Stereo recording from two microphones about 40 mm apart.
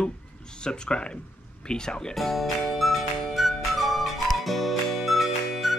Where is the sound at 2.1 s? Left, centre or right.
Centre.